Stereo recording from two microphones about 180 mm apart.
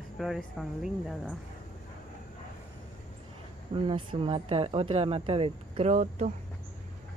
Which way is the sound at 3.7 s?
30° right (ahead or behind).